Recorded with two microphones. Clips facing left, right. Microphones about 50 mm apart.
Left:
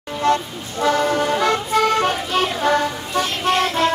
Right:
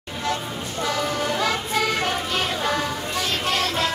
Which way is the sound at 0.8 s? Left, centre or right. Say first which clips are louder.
Left 8 dB; left.